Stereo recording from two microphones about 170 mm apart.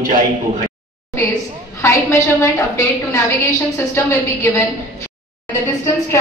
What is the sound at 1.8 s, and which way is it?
A woman's voice, 15° left (ahead or behind).